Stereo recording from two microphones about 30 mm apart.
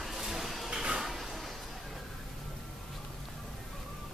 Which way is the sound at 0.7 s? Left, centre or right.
Right.